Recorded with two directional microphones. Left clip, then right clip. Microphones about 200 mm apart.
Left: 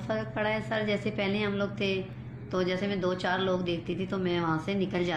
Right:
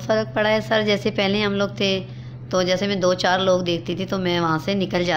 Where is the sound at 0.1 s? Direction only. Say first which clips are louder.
Right 11 dB; 55° right (ahead or behind).